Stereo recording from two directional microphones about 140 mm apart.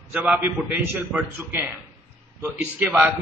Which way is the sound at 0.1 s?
10° right (ahead or behind).